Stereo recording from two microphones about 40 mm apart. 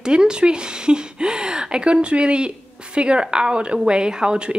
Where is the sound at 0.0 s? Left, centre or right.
Right.